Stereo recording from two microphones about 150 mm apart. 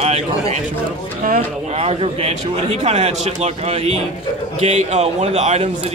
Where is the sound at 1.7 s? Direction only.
40° right (ahead or behind).